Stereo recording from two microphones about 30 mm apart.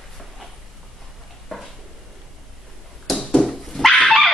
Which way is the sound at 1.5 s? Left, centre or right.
Left.